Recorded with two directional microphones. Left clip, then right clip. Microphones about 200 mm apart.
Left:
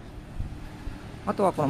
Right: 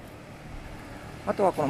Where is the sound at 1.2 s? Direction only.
15° left (ahead or behind).